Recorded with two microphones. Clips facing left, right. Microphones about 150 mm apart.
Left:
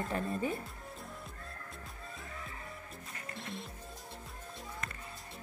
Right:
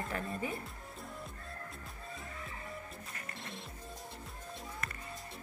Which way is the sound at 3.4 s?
Centre (ahead or behind).